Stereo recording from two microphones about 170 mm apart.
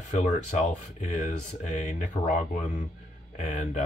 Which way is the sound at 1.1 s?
45° left (ahead or behind).